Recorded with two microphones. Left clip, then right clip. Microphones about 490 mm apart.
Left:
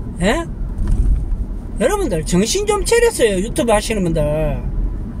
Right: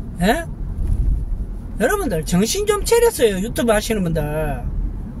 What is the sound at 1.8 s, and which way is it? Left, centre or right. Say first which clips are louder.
Speech: left 2 dB; right.